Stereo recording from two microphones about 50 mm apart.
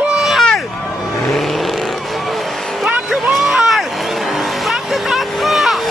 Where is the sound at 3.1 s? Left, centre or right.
Centre.